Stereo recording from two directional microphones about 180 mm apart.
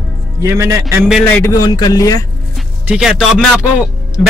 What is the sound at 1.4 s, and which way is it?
Speech, 20° left (ahead or behind).